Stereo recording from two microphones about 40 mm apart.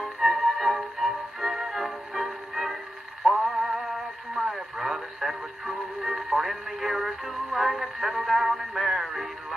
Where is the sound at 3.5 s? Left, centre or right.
Centre.